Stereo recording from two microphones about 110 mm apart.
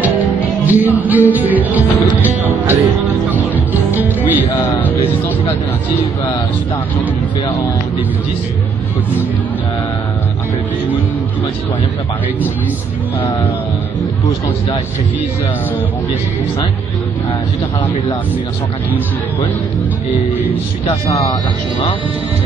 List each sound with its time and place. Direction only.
0.7 s music: 15° right (ahead or behind)
4.7 s speech: 15° left (ahead or behind)
13.2 s speech: 55° left (ahead or behind)
20.9 s speech: 30° left (ahead or behind)